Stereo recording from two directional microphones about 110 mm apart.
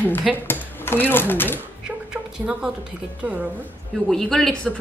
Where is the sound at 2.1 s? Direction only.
5° right (ahead or behind).